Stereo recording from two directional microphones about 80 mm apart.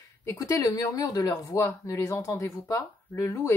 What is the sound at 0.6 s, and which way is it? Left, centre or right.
Speech, left.